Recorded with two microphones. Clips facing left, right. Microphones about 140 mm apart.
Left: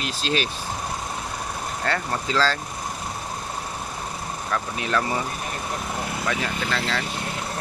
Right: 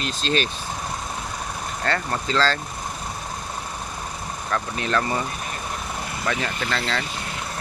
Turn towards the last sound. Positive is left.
turn(degrees=5)  # may be behind; listen again after turning